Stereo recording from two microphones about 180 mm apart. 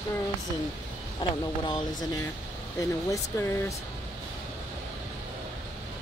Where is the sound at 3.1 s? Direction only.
15° left (ahead or behind).